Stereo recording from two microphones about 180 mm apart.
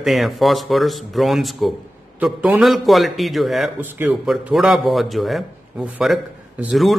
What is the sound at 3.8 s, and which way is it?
Speech, 10° right (ahead or behind).